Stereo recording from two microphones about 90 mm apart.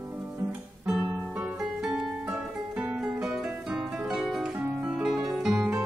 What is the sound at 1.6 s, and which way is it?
Music, 5° right (ahead or behind).